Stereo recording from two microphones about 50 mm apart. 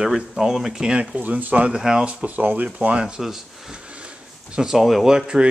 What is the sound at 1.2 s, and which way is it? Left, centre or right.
Speech, right.